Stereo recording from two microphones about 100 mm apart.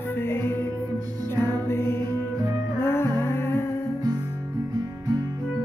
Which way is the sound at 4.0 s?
40° right (ahead or behind).